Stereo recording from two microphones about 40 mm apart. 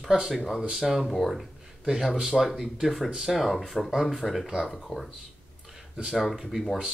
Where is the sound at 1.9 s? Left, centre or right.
Centre.